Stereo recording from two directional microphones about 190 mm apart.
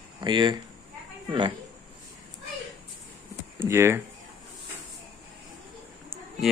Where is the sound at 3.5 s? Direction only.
15° right (ahead or behind).